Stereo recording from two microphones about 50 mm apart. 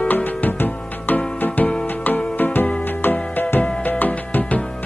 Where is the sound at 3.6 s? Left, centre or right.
Left.